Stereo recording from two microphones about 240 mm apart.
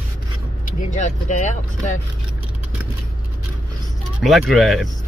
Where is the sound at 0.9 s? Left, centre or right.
Left.